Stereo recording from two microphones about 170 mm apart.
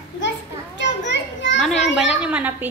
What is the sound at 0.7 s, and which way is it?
Children playing, 90° left.